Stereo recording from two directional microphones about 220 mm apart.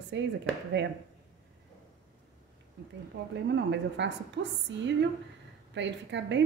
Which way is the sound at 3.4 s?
55° right (ahead or behind).